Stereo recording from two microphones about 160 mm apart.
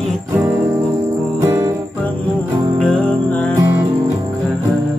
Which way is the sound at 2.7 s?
5° left (ahead or behind).